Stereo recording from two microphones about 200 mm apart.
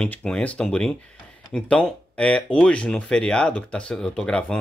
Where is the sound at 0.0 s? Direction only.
5° left (ahead or behind).